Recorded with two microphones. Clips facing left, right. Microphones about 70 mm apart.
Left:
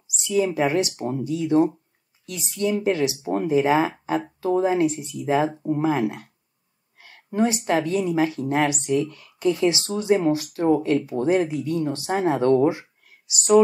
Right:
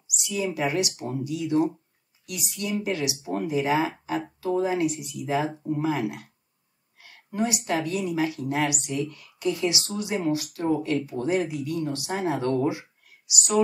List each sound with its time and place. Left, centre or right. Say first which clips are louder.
0.1 s speech: left 7 dB; left